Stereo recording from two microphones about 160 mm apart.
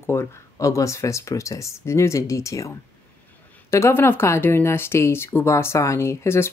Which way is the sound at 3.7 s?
15° left (ahead or behind).